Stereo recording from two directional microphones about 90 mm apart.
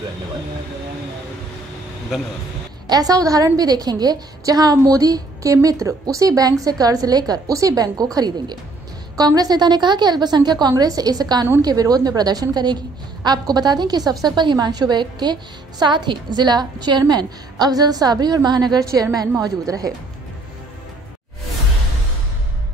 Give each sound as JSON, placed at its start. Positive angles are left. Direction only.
{"t": 2.9, "sound": "a woman's voice", "side_deg": -45}